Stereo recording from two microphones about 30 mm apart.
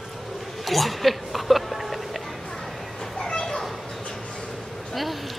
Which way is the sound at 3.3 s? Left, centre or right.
Left.